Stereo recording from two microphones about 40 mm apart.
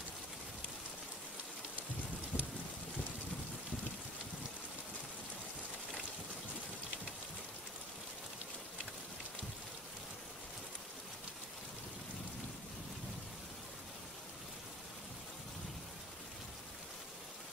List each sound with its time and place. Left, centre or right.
2.3 s wind: left